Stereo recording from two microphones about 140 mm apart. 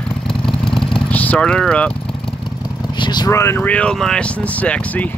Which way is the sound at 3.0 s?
30° left (ahead or behind).